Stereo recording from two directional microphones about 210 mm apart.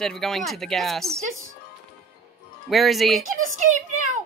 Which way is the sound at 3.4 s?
35° right (ahead or behind).